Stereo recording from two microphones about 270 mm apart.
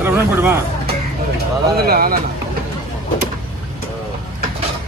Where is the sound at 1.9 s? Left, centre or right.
Right.